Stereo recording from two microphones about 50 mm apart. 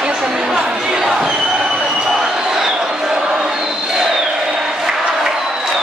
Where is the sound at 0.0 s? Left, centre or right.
Centre.